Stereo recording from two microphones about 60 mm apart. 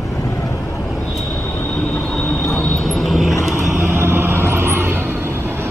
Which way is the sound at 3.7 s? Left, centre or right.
Right.